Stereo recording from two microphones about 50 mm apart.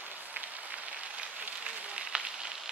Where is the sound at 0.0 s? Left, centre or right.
Right.